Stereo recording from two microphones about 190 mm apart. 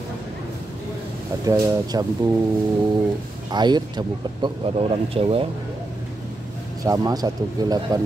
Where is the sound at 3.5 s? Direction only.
20° right (ahead or behind).